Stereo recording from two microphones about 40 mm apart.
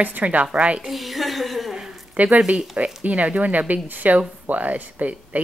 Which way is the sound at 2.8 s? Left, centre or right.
Right.